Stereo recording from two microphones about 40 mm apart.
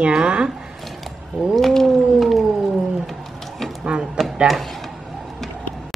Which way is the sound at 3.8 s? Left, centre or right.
Right.